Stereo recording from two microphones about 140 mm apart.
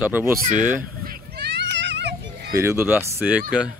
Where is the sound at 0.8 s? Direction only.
90° right.